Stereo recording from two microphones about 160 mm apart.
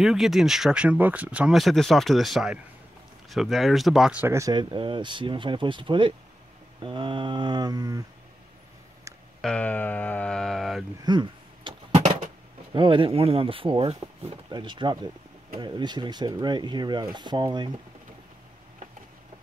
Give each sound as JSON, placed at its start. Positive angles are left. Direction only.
{"t": 0.0, "sound": "speech", "side_deg": 0}
{"t": 9.4, "sound": "speech", "side_deg": 5}
{"t": 11.1, "sound": "a sound", "side_deg": -30}
{"t": 12.7, "sound": "speech", "side_deg": -30}